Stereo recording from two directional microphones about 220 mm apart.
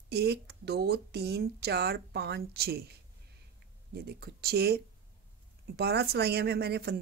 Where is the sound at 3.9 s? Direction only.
45° right (ahead or behind).